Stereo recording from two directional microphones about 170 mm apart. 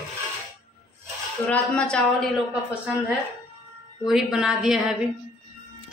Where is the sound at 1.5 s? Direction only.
5° left (ahead or behind).